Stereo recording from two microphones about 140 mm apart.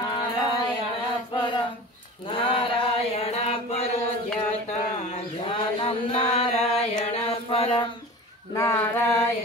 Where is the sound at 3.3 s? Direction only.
45° left (ahead or behind).